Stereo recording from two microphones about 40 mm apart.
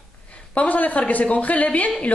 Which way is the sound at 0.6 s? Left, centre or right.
Left.